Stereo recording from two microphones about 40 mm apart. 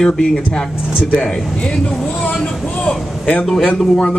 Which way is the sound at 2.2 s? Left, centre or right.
Left.